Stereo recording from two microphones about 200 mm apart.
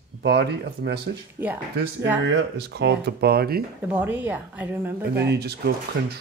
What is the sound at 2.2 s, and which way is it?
Speech, 65° right (ahead or behind).